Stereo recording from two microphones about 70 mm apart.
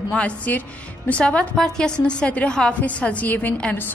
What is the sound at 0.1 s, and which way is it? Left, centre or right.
A woman's voice, centre.